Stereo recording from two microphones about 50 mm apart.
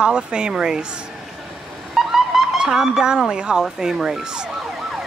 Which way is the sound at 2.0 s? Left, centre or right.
Centre.